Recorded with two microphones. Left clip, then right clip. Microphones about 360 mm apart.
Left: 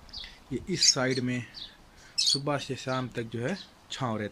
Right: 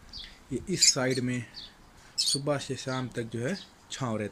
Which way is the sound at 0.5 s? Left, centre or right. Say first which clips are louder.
Even; centre.